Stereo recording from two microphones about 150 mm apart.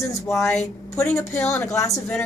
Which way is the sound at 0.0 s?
20° left (ahead or behind).